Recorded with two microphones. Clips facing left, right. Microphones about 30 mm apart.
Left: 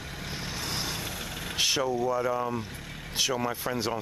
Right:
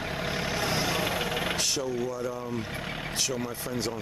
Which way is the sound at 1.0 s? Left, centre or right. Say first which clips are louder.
Right 8 dB; right.